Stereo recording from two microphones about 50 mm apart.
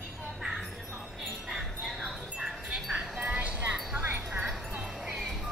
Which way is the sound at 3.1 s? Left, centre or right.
Right.